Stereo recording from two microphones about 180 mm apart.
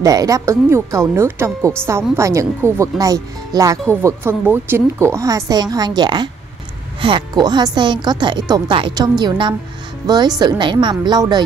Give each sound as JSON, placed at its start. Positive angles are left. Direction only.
{"t": 0.0, "sound": "speech", "side_deg": -20}